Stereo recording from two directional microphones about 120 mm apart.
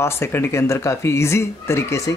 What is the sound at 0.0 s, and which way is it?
Speech, 20° left (ahead or behind).